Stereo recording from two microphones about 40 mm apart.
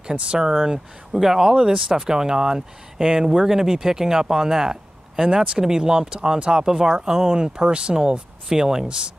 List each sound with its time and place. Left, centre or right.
0.0 s speech: right
1.5 s speech: right